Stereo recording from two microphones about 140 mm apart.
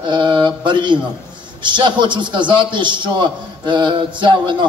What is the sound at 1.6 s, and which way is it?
A man's voice, 35° right (ahead or behind).